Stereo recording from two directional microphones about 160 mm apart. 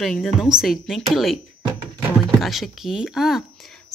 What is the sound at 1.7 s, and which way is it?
Music, 25° right (ahead or behind).